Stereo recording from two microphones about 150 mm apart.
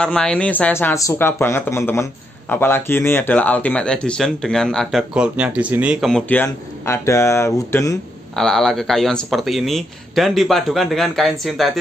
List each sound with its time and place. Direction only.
0.0 s speech: 5° left (ahead or behind); by 8.0 s 20° left (ahead or behind)
8.4 s speech: 5° left (ahead or behind)